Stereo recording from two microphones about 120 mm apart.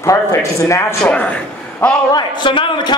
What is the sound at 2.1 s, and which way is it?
Speech, 40° left (ahead or behind).